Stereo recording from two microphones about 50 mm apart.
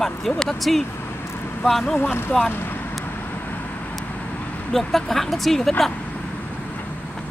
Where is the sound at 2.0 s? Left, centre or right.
Left.